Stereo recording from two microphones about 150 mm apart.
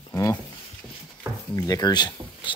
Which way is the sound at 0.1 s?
20° left (ahead or behind).